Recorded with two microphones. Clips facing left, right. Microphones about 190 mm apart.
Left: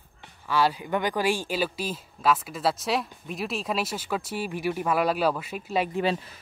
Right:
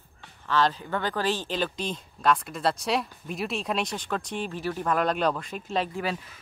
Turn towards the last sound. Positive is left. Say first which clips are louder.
# left 5 dB
turn(degrees=25)  # may be behind; listen again after turning